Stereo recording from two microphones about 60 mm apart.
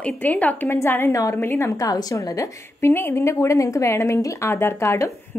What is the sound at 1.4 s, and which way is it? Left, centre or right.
Speech, left.